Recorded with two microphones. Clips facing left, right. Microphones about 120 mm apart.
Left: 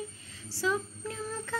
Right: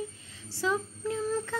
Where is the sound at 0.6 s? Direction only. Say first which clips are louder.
Right 1 dB; 20° right (ahead or behind).